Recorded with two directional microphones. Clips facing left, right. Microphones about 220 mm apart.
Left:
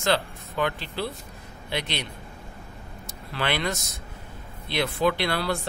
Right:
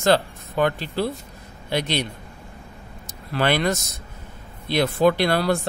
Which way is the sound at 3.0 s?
45° right (ahead or behind).